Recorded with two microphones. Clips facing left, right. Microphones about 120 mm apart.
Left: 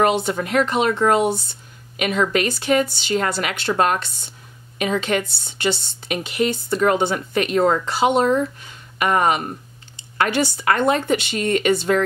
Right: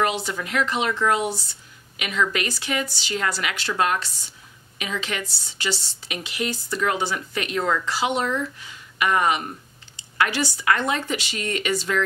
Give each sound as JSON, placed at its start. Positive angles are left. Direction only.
{"t": 0.0, "sound": "speech", "side_deg": 50}
{"t": 4.7, "sound": "speech", "side_deg": 45}